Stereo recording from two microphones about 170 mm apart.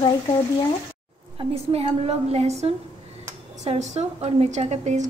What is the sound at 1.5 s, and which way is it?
A woman's voice, 35° right (ahead or behind).